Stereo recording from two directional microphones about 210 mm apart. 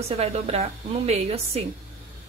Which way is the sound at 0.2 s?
30° right (ahead or behind).